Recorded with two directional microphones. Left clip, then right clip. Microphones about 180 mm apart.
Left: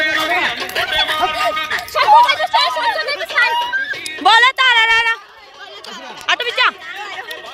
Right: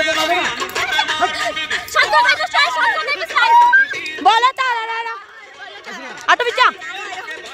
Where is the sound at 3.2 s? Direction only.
45° right (ahead or behind).